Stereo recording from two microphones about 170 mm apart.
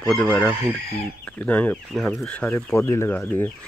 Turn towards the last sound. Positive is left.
turn(degrees=10)  # may be behind; listen again after turning